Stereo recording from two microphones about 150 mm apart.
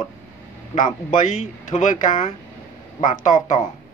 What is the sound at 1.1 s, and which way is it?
Speech, 55° left (ahead or behind).